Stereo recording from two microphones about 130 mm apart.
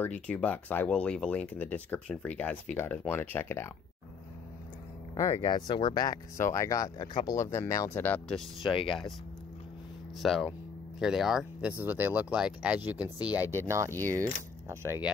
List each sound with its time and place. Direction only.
0.0 s speech: 10° left (ahead or behind)
5.3 s speech: 35° left (ahead or behind)
6.3 s speech: 20° left (ahead or behind)
8.6 s speech: 40° left (ahead or behind)
10.1 s speech: centre (ahead or behind)
11.7 s speech: 15° right (ahead or behind)